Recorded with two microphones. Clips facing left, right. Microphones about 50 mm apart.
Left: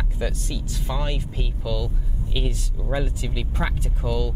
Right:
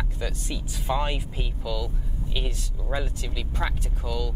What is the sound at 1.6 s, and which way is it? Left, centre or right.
Speech, centre.